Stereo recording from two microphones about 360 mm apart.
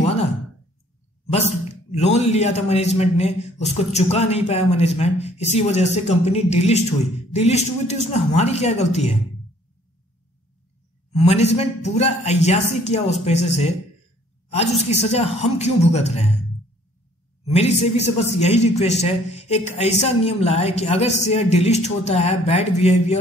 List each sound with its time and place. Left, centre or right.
1.9 s a man's voice: centre
11.1 s a man's voice: centre
17.5 s a man's voice: centre